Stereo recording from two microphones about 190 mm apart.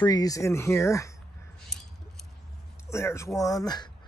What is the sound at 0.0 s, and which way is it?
Speech, 20° left (ahead or behind).